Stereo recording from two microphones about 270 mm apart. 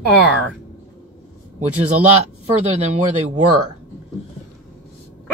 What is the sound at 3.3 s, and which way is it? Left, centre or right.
Speech, right.